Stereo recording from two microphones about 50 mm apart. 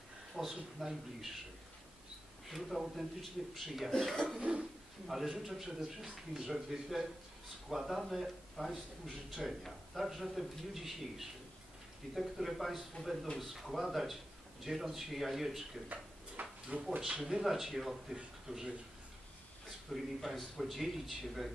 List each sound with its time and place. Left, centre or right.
0.4 s speech: centre
2.5 s speech: centre
4.4 s a sound: centre
5.0 s speech: centre
16.4 s drawer open or close: right
17.0 s speech: centre
19.9 s speech: centre